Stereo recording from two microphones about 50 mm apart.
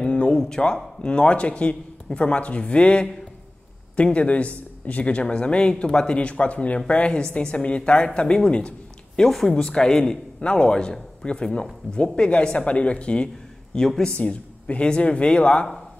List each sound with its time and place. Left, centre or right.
0.0 s a sound: left
0.4 s a man's voice: centre
9.3 s a man's voice: centre; by 13.3 s left
13.7 s speech: centre
14.1 s a man's voice: left